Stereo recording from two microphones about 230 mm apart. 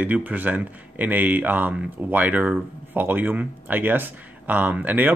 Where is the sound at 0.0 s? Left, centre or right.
Centre.